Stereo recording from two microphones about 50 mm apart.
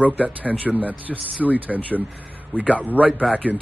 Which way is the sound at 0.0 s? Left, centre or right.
Right.